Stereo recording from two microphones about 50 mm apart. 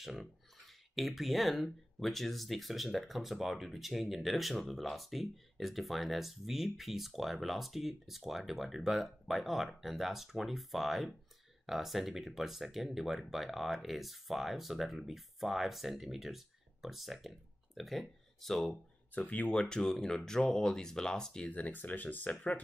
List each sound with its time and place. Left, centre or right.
0.0 s speech: centre
19.1 s speech: left
19.5 s speech: centre
21.5 s speech: left